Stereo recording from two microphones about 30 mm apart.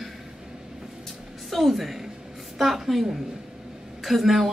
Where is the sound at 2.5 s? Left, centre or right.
Centre.